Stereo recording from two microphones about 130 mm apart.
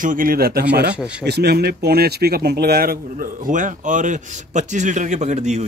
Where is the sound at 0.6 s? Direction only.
10° right (ahead or behind).